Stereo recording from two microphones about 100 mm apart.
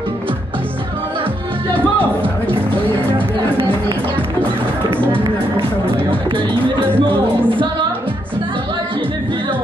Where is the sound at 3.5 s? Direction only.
65° right (ahead or behind).